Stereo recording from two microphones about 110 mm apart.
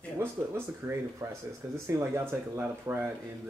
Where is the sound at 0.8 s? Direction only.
20° right (ahead or behind).